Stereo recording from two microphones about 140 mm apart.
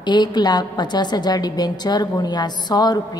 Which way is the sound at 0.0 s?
30° left (ahead or behind).